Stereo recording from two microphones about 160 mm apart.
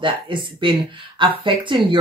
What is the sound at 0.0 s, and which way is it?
Speech, 30° right (ahead or behind).